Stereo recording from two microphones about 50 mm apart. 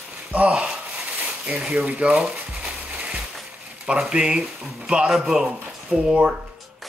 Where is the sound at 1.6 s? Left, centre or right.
Right.